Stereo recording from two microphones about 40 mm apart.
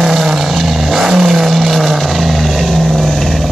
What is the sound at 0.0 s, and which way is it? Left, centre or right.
Vehicle, centre.